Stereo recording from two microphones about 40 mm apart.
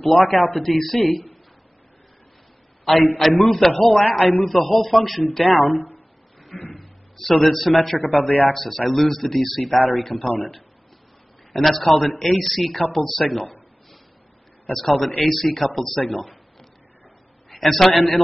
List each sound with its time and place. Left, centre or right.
0.0 s speech: centre
2.8 s a man's voice: centre
6.7 s a man's voice: centre
8.2 s speech: left
8.5 s speech: centre
11.5 s speech: centre
14.7 s speech: centre
17.5 s a man's voice: centre